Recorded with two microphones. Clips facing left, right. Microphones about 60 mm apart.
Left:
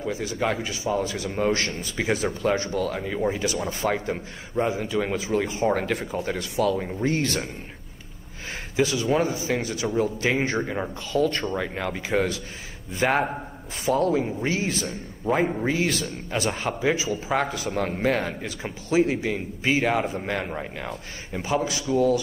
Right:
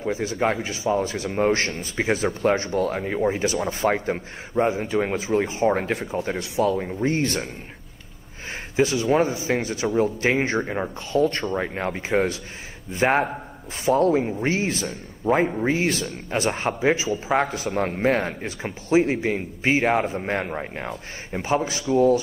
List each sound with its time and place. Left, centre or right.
0.0 s a man's voice: right
6.8 s speech: centre
7.1 s a man's voice: right
8.7 s a man's voice: right
10.6 s speech: centre
11.1 s a man's voice: right